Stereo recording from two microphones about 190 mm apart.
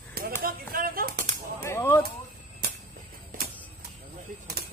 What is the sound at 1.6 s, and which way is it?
Whip, 15° left (ahead or behind).